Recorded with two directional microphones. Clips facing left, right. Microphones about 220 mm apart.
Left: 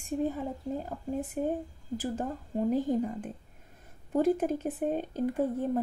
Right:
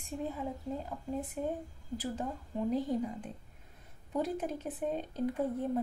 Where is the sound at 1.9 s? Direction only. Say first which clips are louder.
Left 4 dB; 50° left (ahead or behind).